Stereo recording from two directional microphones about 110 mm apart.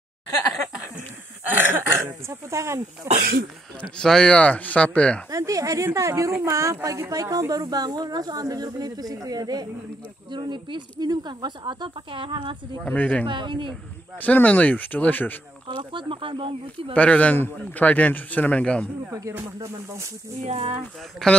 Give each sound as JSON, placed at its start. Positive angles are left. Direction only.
{"t": 1.5, "sound": "speech", "side_deg": -20}
{"t": 3.1, "sound": "music", "side_deg": -25}
{"t": 4.0, "sound": "a man's voice", "side_deg": 5}
{"t": 5.3, "sound": "a woman's voice", "side_deg": -30}
{"t": 12.8, "sound": "a man's voice", "side_deg": 10}
{"t": 13.3, "sound": "speech", "side_deg": -45}
{"t": 14.2, "sound": "a man's voice", "side_deg": 15}
{"t": 15.8, "sound": "speech", "side_deg": -50}
{"t": 16.9, "sound": "a man's voice", "side_deg": 10}
{"t": 19.1, "sound": "music", "side_deg": -30}
{"t": 20.4, "sound": "speech", "side_deg": -75}
{"t": 21.2, "sound": "speech", "side_deg": 5}